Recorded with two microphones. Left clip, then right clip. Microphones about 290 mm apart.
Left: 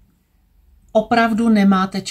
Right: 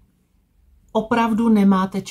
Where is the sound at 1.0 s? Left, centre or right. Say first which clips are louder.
Left 4 dB; centre.